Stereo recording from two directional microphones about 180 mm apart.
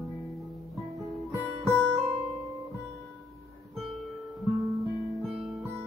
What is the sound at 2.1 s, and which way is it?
Guitar, centre (ahead or behind).